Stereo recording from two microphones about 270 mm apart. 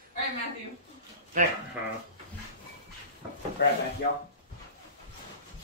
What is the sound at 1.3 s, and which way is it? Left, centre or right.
Speech, right.